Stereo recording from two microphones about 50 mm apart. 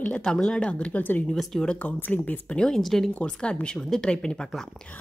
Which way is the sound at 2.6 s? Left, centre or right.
Centre.